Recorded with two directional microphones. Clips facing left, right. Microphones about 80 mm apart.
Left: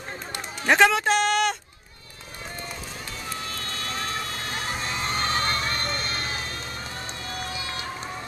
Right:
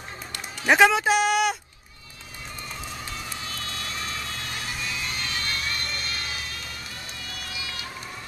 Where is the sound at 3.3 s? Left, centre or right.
Left.